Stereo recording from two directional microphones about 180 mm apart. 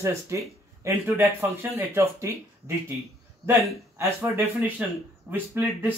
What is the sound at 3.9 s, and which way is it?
Speech, 15° right (ahead or behind).